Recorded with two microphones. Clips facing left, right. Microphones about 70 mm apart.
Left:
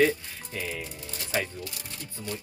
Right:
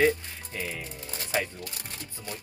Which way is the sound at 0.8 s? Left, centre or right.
Right.